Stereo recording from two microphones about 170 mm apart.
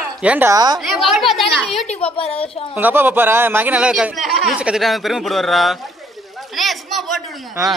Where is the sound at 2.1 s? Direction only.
35° left (ahead or behind).